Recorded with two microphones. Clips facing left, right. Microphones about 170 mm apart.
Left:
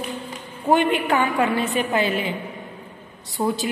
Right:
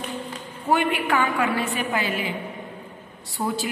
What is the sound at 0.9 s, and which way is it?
A woman's voice, 20° left (ahead or behind).